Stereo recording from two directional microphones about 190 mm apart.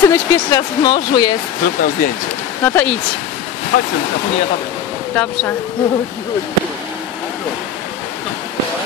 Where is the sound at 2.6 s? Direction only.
10° left (ahead or behind).